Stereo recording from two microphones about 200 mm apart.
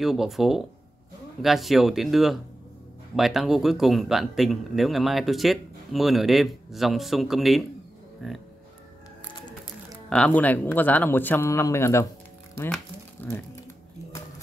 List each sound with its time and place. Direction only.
0.0 s speech: centre (ahead or behind)
10.0 s speech: 5° left (ahead or behind)
12.5 s crumpling: 10° left (ahead or behind)